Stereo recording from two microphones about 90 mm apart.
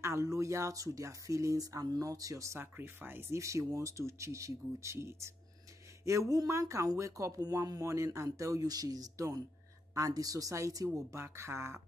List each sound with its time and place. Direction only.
0.0 s speech: 35° right (ahead or behind)